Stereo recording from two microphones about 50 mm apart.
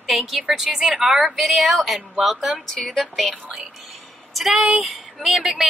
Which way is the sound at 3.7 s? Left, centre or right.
Centre.